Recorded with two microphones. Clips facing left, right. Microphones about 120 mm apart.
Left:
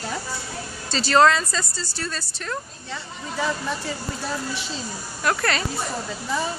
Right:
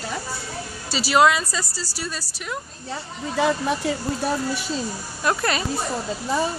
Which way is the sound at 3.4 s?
60° right (ahead or behind).